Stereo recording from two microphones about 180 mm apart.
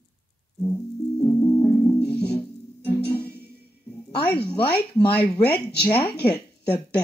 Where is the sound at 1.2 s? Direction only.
20° left (ahead or behind).